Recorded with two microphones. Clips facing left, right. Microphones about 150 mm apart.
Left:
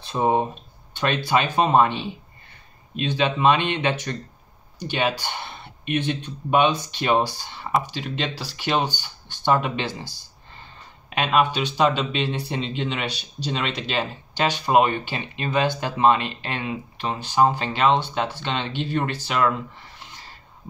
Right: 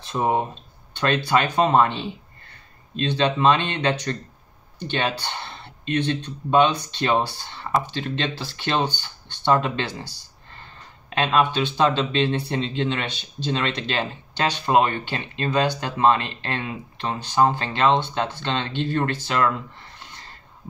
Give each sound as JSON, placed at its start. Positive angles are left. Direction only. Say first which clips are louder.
{"t": 0.2, "sound": "speech", "louder": "left 2 dB", "side_deg": 20}
{"t": 11.1, "sound": "speech", "louder": "even", "side_deg": 10}